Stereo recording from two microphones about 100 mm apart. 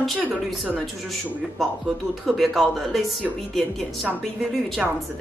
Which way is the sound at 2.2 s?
Centre (ahead or behind).